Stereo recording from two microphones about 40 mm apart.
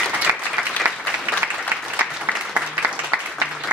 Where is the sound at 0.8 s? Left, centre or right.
Right.